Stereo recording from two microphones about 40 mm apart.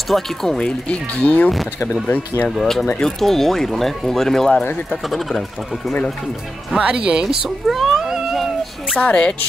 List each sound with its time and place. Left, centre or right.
0.1 s speech: centre
0.6 s speech: left
1.1 s speech: left
1.5 s speech: centre
2.0 s speech: left
2.5 s speech: centre
6.8 s speech: right
7.4 s speech: centre
8.0 s cat: centre
8.9 s speech: left